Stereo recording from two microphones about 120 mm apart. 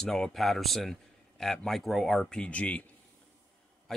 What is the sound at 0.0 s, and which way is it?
Speech, 5° left (ahead or behind).